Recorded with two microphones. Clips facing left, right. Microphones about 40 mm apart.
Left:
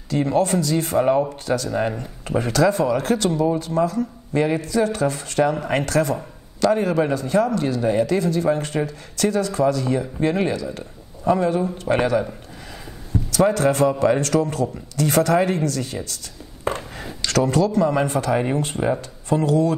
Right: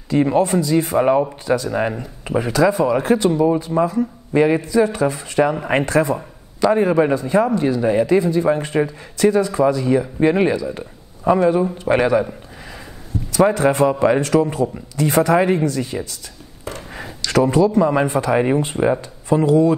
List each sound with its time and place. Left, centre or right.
0.1 s speech: right
13.3 s speech: right
16.7 s speech: left
17.3 s speech: right